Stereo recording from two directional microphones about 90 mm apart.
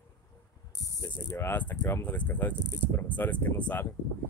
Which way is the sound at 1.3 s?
20° left (ahead or behind).